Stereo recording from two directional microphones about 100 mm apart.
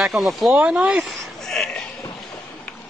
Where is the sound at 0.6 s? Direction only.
10° right (ahead or behind).